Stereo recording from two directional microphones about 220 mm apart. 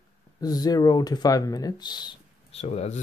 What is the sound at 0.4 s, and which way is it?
Speech, 15° left (ahead or behind).